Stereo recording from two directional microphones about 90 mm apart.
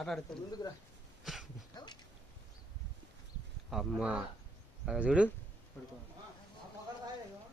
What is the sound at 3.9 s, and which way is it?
Speech, 10° right (ahead or behind).